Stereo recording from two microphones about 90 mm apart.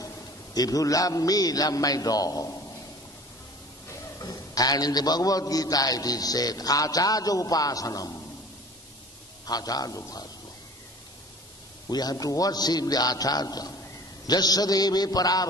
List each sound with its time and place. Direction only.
0.6 s a man's voice: 40° left (ahead or behind)
4.2 s a man's voice: 45° left (ahead or behind)
9.5 s a man's voice: 45° left (ahead or behind)
11.9 s a man's voice: 45° left (ahead or behind)